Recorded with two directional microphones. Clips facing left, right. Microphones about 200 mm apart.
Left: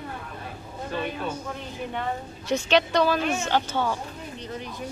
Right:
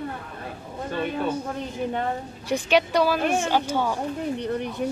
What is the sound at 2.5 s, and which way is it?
A woman's voice, 10° right (ahead or behind).